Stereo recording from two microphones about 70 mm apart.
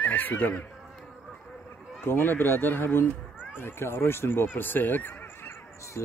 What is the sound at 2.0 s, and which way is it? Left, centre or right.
Speech, left.